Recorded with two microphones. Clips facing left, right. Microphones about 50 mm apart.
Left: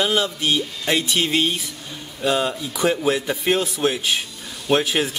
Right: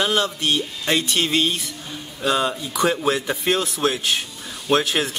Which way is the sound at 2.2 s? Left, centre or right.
Centre.